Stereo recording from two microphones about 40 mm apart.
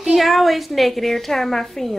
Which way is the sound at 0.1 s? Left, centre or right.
Centre.